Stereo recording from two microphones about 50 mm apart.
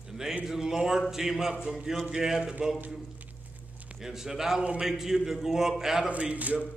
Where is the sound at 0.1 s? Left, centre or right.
Centre.